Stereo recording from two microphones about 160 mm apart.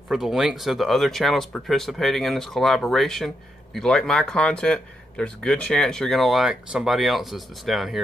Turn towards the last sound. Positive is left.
turn(degrees=0)  # may be behind; listen again after turning